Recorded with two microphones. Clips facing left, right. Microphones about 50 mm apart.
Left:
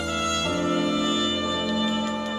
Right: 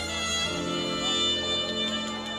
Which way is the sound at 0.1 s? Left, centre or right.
Left.